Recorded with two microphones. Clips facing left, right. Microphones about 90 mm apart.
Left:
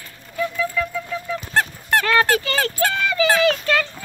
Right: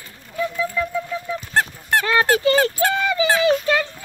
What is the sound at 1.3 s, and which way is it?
Speech, 15° right (ahead or behind).